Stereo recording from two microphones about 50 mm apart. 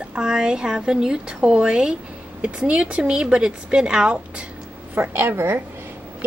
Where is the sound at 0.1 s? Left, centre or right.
Centre.